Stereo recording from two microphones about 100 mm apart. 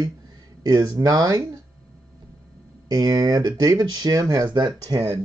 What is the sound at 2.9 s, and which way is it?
Speech, 40° right (ahead or behind).